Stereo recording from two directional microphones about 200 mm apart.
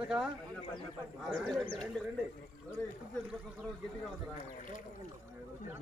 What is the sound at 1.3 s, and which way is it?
Speech, 5° left (ahead or behind).